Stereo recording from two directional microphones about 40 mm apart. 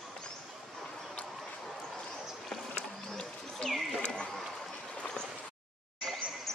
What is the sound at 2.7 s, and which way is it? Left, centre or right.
Bird, left.